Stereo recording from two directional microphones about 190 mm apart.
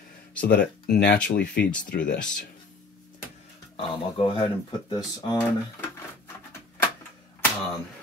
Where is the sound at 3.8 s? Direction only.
30° left (ahead or behind).